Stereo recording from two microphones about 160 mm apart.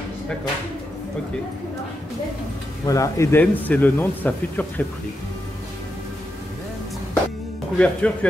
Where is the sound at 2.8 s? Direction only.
20° left (ahead or behind).